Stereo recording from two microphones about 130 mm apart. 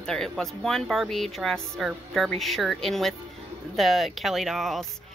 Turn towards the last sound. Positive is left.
turn(degrees=0)  # may be behind; listen again after turning